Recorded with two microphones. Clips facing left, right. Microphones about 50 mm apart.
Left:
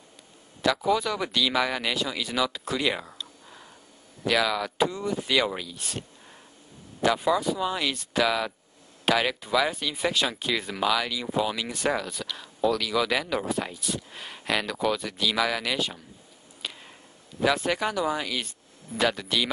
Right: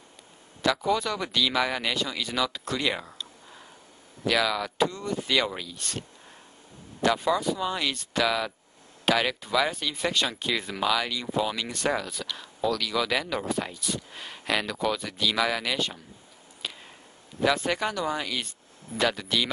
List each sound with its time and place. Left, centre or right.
0.6 s speech: centre
7.1 s speech: centre
16.6 s a sound: centre
17.4 s speech: centre